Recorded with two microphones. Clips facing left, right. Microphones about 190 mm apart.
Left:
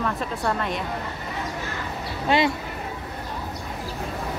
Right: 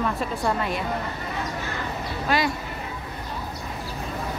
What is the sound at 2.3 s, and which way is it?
Speech, 25° left (ahead or behind).